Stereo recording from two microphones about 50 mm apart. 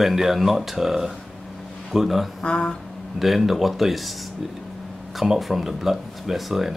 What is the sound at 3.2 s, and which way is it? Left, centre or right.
Speech, centre.